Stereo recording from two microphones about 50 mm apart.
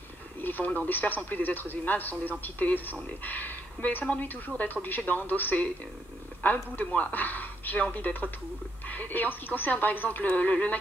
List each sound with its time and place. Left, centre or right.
0.4 s radio: left
0.7 s a man's voice: left